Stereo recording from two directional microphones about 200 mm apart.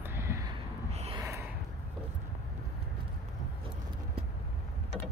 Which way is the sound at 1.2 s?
15° right (ahead or behind).